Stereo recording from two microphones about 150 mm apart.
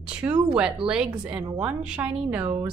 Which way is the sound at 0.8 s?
5° right (ahead or behind).